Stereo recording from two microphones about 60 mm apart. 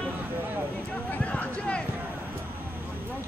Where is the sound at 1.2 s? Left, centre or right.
Centre.